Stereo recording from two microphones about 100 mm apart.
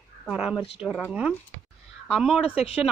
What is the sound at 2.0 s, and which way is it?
Speech, 5° right (ahead or behind).